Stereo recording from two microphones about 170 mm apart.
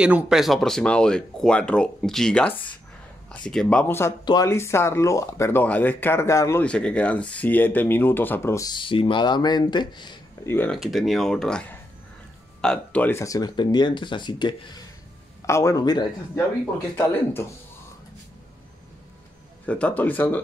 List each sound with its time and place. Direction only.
0.0 s speech: 5° right (ahead or behind); by 6.6 s 15° left (ahead or behind)
6.6 s speech: 5° left (ahead or behind); by 10.1 s 25° left (ahead or behind)
10.4 s speech: 15° left (ahead or behind)
10.7 s speech: centre (ahead or behind); by 16.1 s 25° left (ahead or behind)
16.9 s speech: 15° left (ahead or behind)
19.6 s speech: 10° left (ahead or behind)